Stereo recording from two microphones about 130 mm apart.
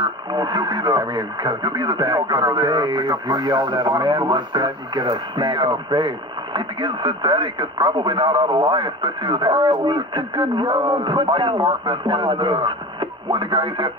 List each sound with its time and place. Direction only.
0.0 s speech: 35° right (ahead or behind)